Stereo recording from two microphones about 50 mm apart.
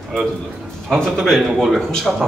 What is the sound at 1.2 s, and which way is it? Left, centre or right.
Speech, centre.